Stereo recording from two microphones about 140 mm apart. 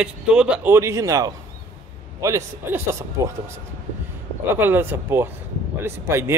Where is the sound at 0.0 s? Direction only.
5° right (ahead or behind).